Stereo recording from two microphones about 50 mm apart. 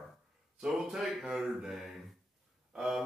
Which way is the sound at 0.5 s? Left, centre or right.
Centre.